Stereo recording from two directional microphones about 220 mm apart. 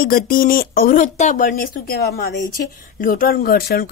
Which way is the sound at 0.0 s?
40° left (ahead or behind).